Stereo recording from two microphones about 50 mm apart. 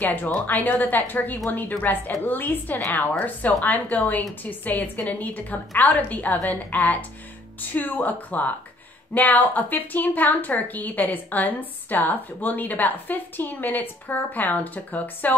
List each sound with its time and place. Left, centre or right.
0.0 s a woman's voice: left